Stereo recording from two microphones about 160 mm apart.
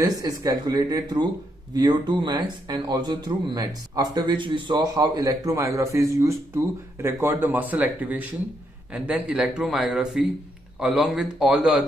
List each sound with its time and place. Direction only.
0.0 s speech: 25° right (ahead or behind); by 11.8 s 5° right (ahead or behind)